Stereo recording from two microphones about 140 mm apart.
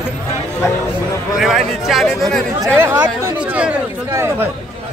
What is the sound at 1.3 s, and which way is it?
Speech, centre (ahead or behind).